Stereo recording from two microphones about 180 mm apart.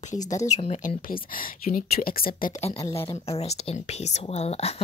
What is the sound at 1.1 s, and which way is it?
A woman's voice, 50° left (ahead or behind).